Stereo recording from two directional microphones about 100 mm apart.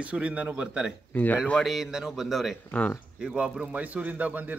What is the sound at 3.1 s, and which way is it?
A man's voice, 10° right (ahead or behind).